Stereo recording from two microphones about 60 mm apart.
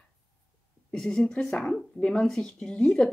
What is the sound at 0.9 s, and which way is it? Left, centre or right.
Speech, centre.